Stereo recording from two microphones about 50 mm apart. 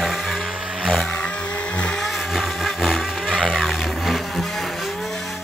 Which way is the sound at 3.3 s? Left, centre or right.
Centre.